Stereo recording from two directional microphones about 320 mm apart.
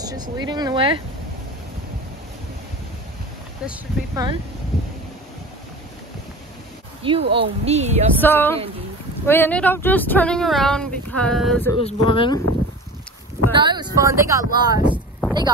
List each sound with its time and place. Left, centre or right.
0.0 s speech: centre
3.6 s speech: centre
7.0 s speech: centre
8.2 s speech: centre
11.8 s speech: centre
13.5 s speech: centre